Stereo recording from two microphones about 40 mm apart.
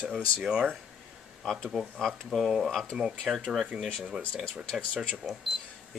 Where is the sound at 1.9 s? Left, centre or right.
Centre.